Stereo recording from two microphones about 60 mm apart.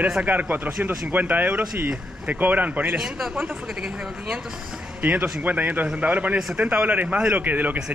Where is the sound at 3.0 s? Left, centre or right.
Centre.